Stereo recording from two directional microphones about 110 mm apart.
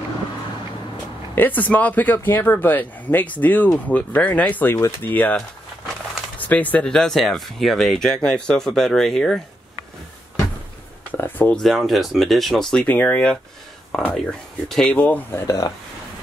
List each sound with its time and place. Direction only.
1.3 s speech: 15° left (ahead or behind)
11.1 s a sound: 15° left (ahead or behind)
11.5 s speech: 5° left (ahead or behind)
12.8 s speech: 15° left (ahead or behind)
15.0 s speech: 15° left (ahead or behind)